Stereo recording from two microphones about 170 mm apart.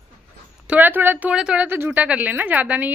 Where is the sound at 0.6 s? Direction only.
10° right (ahead or behind).